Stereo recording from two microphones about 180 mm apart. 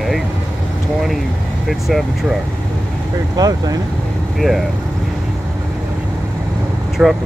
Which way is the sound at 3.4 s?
20° right (ahead or behind).